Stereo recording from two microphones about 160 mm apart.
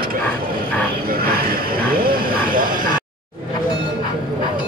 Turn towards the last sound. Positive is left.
turn(degrees=-60)  # may be behind; listen again after turning